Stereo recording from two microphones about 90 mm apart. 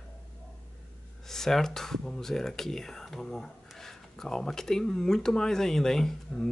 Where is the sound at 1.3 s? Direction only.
5° left (ahead or behind).